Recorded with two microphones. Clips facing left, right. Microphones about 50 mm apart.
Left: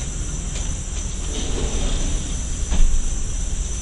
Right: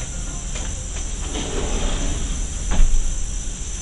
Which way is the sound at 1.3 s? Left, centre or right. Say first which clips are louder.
Right 2 dB; right.